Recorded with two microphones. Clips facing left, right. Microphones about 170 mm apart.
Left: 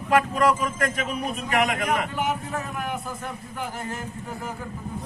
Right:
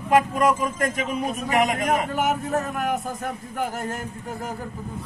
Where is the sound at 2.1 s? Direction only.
45° right (ahead or behind).